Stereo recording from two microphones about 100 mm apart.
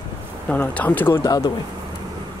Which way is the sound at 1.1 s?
35° left (ahead or behind).